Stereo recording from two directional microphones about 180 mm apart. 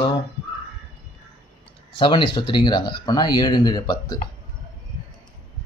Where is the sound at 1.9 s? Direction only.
30° left (ahead or behind).